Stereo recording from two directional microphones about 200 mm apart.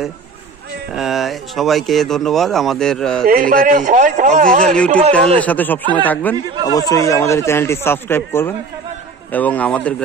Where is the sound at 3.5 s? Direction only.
45° right (ahead or behind).